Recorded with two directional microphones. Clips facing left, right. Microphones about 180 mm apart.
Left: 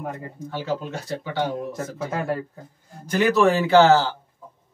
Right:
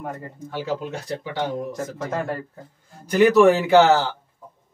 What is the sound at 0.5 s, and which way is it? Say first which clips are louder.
Speech: right 1 dB; 15° right (ahead or behind).